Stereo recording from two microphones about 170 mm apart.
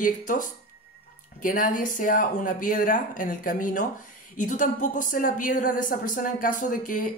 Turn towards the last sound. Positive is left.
turn(degrees=55)  # may be behind; listen again after turning